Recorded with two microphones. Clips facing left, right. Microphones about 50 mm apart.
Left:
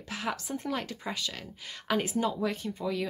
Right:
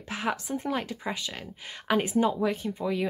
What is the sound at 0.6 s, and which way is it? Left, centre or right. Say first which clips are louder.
A woman's voice: right 3 dB; centre.